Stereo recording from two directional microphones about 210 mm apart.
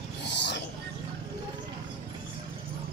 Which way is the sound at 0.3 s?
55° left (ahead or behind).